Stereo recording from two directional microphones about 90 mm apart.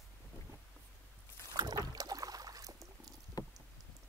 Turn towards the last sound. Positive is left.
turn(degrees=40)  # may be behind; listen again after turning